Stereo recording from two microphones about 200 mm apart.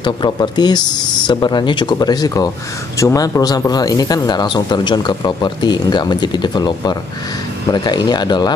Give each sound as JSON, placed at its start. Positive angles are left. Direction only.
{"t": 0.0, "sound": "speech", "side_deg": 20}